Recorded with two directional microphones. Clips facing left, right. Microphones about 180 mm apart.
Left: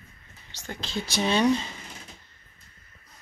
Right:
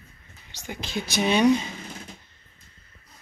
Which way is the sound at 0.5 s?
15° right (ahead or behind).